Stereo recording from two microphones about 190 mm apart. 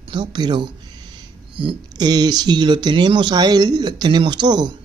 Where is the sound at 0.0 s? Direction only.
25° right (ahead or behind).